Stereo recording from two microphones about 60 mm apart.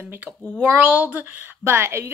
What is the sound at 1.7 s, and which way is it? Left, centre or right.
Speech, right.